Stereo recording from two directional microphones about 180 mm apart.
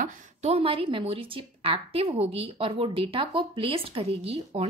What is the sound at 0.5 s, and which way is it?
A woman's voice, 30° right (ahead or behind).